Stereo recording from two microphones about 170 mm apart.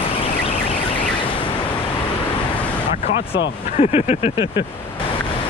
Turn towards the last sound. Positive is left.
turn(degrees=40)  # may be behind; listen again after turning